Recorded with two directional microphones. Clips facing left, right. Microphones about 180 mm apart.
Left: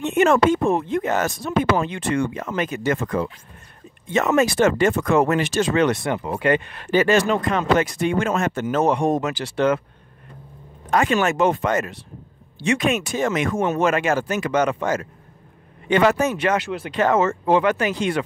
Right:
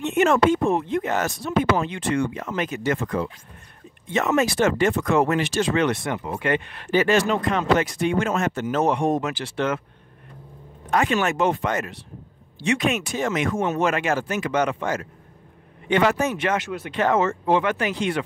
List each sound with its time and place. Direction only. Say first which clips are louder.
0.0 s speech: left 2 dB; 50° left (ahead or behind)
10.9 s speech: left 2 dB; 40° left (ahead or behind)